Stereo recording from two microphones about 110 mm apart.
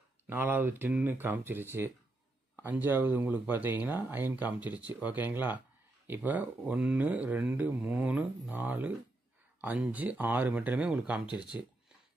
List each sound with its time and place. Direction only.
0.3 s speech: 15° right (ahead or behind)